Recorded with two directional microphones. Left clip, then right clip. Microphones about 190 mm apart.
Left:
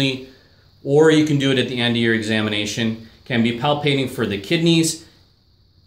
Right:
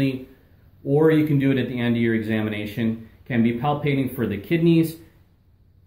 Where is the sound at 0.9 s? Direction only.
20° left (ahead or behind).